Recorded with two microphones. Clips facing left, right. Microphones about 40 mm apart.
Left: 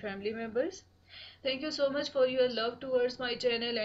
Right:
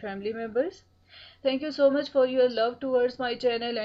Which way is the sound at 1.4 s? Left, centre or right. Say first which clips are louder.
Right 8 dB; centre.